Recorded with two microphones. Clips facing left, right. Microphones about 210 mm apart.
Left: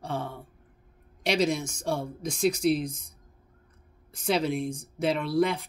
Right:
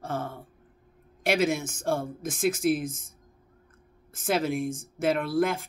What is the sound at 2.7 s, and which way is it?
Speech, 50° right (ahead or behind).